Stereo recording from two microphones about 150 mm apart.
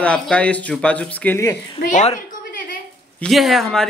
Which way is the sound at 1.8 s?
55° left (ahead or behind).